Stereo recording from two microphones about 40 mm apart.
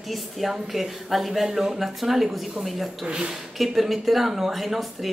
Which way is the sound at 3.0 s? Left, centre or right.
Right.